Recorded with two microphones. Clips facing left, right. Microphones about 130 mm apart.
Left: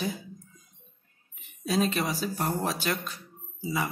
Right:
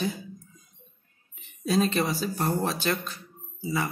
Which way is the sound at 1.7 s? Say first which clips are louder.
Right 2 dB; 5° left (ahead or behind).